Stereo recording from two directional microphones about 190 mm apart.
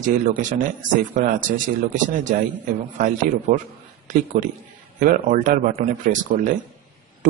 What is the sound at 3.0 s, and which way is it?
A man's voice, 45° right (ahead or behind).